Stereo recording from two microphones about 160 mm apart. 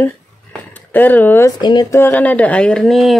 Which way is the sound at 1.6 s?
25° left (ahead or behind).